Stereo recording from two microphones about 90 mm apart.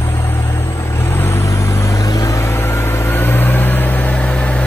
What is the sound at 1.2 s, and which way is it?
Vehicle, 30° left (ahead or behind).